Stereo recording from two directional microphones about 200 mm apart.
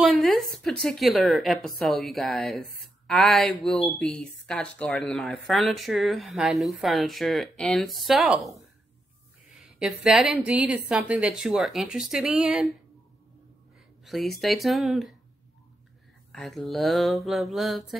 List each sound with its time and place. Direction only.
0.0 s speech: centre (ahead or behind)
9.8 s speech: centre (ahead or behind)
14.0 s speech: centre (ahead or behind)
16.3 s speech: centre (ahead or behind)